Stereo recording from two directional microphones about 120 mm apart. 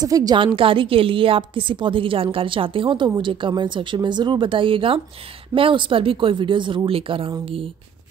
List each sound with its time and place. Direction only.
0.0 s a woman's voice: 30° right (ahead or behind)
0.6 s a woman's voice: 45° right (ahead or behind)